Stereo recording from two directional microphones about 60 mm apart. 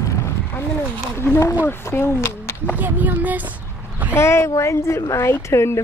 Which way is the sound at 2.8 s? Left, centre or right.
Right.